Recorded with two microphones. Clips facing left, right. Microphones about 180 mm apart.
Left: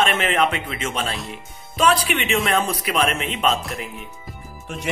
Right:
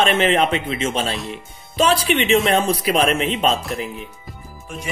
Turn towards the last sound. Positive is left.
turn(degrees=-30)  # may be behind; listen again after turning